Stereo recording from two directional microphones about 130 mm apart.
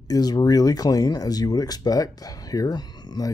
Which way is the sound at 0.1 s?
30° left (ahead or behind).